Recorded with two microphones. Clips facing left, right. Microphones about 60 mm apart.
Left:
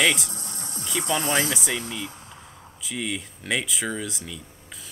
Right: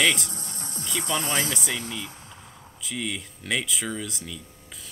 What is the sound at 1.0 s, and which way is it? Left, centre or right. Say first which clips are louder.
Music: left 3 dB; left.